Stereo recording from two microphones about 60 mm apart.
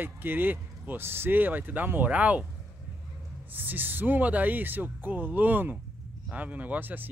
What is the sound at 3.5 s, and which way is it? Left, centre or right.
Speech, right.